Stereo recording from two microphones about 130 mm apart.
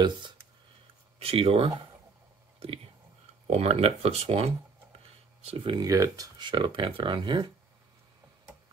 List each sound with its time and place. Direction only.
1.2 s speech: 50° right (ahead or behind)
5.9 s speech: 25° right (ahead or behind)